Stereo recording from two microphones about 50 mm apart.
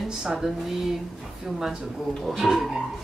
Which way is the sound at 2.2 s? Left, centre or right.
Centre.